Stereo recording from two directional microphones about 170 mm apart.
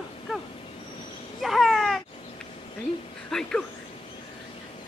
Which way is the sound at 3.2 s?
5° left (ahead or behind).